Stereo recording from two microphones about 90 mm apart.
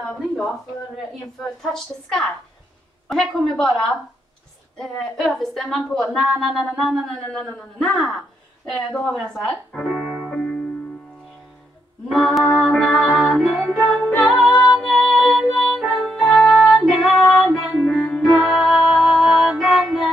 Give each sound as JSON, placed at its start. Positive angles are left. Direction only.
{"t": 1.6, "sound": "a man's voice", "side_deg": 5}
{"t": 4.7, "sound": "a man's voice", "side_deg": 5}
{"t": 9.8, "sound": "music", "side_deg": 0}
{"t": 12.1, "sound": "a man's voice", "side_deg": 0}
{"t": 12.5, "sound": "music", "side_deg": 10}
{"t": 13.7, "sound": "music", "side_deg": 15}
{"t": 14.5, "sound": "music", "side_deg": 55}
{"t": 14.8, "sound": "music", "side_deg": 0}
{"t": 16.3, "sound": "music", "side_deg": 10}
{"t": 16.7, "sound": "female singing", "side_deg": 0}
{"t": 17.2, "sound": "music", "side_deg": 5}